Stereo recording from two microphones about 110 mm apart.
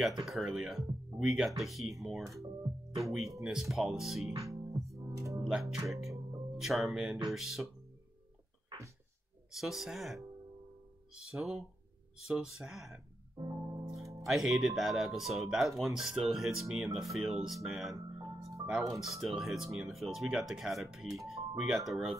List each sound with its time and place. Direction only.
0.2 s speech: centre (ahead or behind)
3.4 s speech: centre (ahead or behind)
4.4 s music: 30° right (ahead or behind)
5.4 s speech: 5° right (ahead or behind)
6.1 s music: 30° right (ahead or behind)
6.6 s speech: centre (ahead or behind)
9.5 s speech: centre (ahead or behind)
13.4 s music: 35° right (ahead or behind)
14.2 s speech: centre (ahead or behind)
18.2 s music: 30° right (ahead or behind)
18.7 s speech: 5° right (ahead or behind)